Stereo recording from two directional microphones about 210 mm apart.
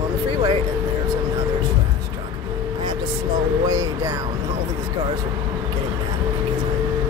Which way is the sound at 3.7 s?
15° right (ahead or behind).